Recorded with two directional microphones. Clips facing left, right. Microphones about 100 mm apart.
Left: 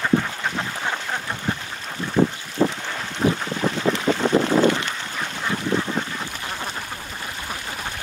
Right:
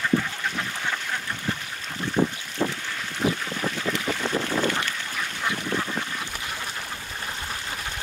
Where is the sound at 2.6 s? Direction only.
45° left (ahead or behind).